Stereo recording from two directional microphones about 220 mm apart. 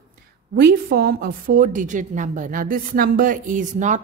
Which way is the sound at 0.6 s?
45° right (ahead or behind).